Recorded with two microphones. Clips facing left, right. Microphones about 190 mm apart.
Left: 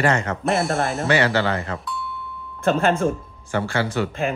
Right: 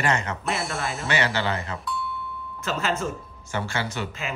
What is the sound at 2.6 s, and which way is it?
Speech, 55° left (ahead or behind).